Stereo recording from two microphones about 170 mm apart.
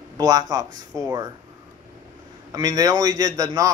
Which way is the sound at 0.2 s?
25° right (ahead or behind).